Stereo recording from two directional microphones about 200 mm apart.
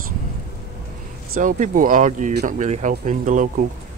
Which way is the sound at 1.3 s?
45° right (ahead or behind).